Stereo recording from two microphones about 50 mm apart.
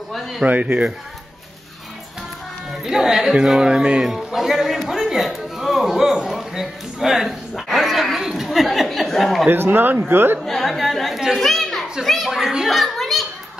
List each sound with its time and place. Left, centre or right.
0.1 s a man's voice: centre
0.5 s a man's voice: right
2.8 s speech: centre
7.6 s dog: centre
8.5 s a sound: centre
8.8 s chuckle: centre
9.5 s a man's voice: right
10.4 s a sound: centre
11.1 s chatter: centre
11.4 s children playing: centre